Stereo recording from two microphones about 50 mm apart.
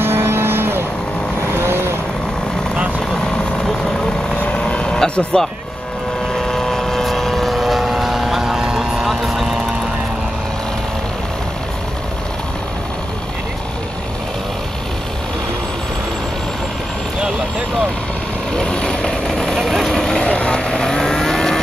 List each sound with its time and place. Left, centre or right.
0.0 s music: right
1.5 s vehicle: right
4.4 s vehicle: left; by 9.6 s centre
18.6 s vehicle: centre
20.2 s vehicle: centre